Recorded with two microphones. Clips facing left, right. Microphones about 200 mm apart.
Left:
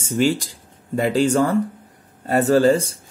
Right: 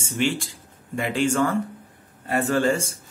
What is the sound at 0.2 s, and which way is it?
Speech, 40° left (ahead or behind).